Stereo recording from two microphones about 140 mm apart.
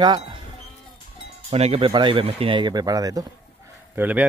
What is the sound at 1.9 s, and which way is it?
Speech, 35° right (ahead or behind).